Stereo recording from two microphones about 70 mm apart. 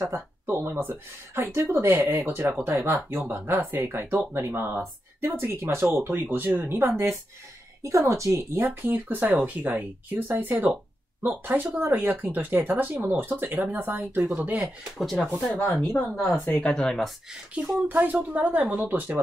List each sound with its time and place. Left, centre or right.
0.1 s speech: right
7.8 s a woman's voice: right
8.6 s speech: right
14.3 s speech: right
15.0 s speech: centre
15.8 s speech: left
16.6 s speech: centre
17.6 s speech: centre
17.8 s speech: right